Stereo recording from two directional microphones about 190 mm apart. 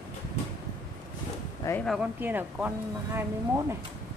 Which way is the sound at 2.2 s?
10° right (ahead or behind).